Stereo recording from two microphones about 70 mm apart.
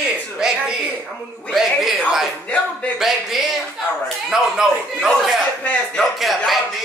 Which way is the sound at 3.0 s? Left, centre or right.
Centre.